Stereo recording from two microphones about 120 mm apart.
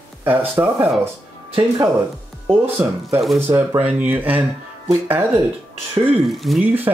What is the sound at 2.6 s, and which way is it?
Speech, 20° right (ahead or behind).